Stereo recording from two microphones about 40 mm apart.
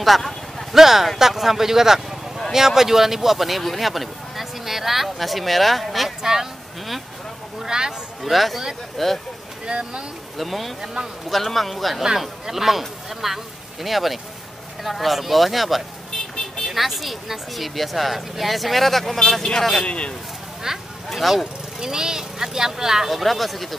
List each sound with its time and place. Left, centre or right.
0.0 s a sound: centre
0.7 s speech: centre
7.6 s speech: centre
8.2 s speech: centre
9.7 s speech: right
10.3 s speech: centre
19.8 s speech: left
20.7 s speech: centre
21.1 s speech: centre
21.7 s speech: centre